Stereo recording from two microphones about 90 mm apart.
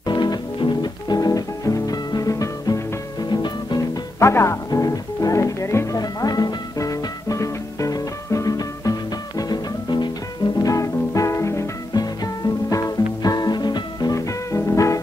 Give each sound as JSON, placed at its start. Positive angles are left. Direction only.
{"t": 0.0, "sound": "music", "side_deg": 55}
{"t": 4.2, "sound": "music", "side_deg": 30}
{"t": 4.6, "sound": "music", "side_deg": 40}
{"t": 5.9, "sound": "music", "side_deg": 45}
{"t": 10.6, "sound": "music", "side_deg": 40}
{"t": 12.6, "sound": "music", "side_deg": 40}